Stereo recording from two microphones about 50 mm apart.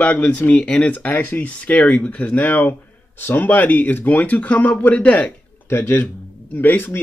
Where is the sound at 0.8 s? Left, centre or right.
Left.